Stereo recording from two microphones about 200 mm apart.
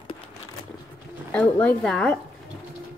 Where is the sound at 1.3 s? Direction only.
5° left (ahead or behind).